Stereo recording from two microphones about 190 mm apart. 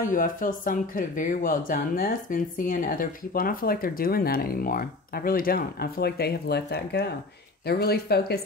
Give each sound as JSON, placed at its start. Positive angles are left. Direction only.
{"t": 0.0, "sound": "speech", "side_deg": 45}